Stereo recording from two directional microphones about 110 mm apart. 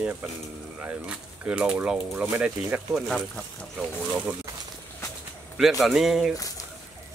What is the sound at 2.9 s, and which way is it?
Speech, 5° right (ahead or behind).